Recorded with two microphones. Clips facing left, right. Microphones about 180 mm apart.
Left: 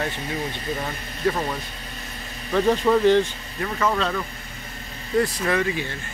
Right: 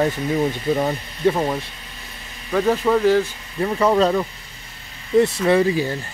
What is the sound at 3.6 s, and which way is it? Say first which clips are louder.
Speech: right 7 dB; 30° right (ahead or behind).